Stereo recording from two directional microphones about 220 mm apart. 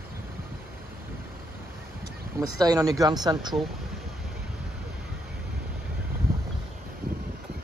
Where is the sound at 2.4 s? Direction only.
15° right (ahead or behind).